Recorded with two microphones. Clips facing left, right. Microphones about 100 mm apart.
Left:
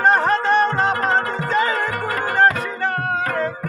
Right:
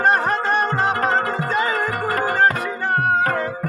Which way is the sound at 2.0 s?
30° right (ahead or behind).